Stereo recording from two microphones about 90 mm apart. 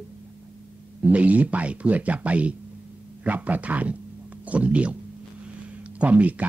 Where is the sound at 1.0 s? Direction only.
15° right (ahead or behind).